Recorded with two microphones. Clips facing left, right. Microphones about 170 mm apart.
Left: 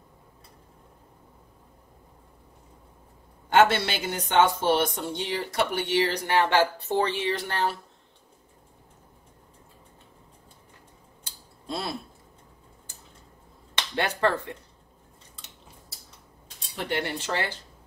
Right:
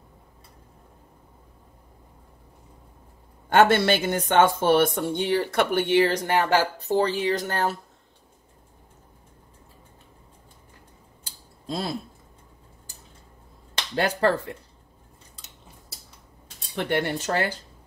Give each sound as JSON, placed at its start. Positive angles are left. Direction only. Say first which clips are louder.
{"t": 3.4, "sound": "speech", "louder": "right 3 dB", "side_deg": -55}
{"t": 11.6, "sound": "a sound", "louder": "right 3 dB", "side_deg": -35}
{"t": 13.9, "sound": "speech", "louder": "right 3 dB", "side_deg": -35}
{"t": 16.7, "sound": "speech", "louder": "right 4 dB", "side_deg": -60}
{"t": 17.2, "sound": "speech", "louder": "right 4 dB", "side_deg": -45}